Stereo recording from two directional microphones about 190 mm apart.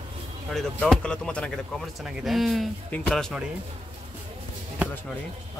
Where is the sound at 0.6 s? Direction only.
Centre (ahead or behind).